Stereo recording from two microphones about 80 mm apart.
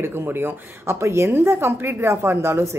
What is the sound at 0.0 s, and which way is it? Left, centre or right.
A woman's voice, right.